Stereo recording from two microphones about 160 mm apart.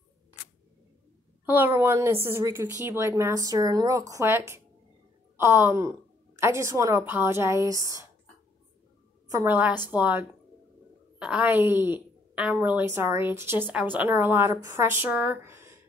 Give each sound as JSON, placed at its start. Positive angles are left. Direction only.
{"t": 1.4, "sound": "a woman's voice", "side_deg": -10}
{"t": 9.3, "sound": "a woman's voice", "side_deg": -20}